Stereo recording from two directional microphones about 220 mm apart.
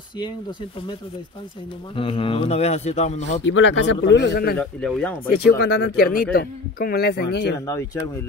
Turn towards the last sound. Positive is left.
turn(degrees=15)  # may be behind; listen again after turning